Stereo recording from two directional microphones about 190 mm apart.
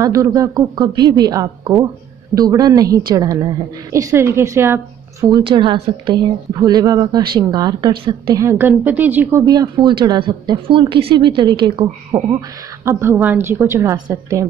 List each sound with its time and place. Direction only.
0.0 s a woman's voice: 20° right (ahead or behind)
9.4 s a woman's voice: 20° right (ahead or behind)